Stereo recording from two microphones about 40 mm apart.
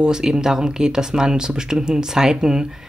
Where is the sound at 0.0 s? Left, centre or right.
Centre.